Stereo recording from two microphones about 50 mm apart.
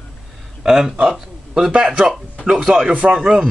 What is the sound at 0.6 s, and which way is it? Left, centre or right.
A man's voice, centre.